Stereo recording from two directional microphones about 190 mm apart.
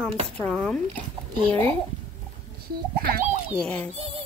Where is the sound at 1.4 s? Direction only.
30° right (ahead or behind).